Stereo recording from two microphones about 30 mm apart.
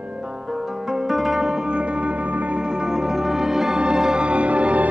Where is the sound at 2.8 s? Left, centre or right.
Right.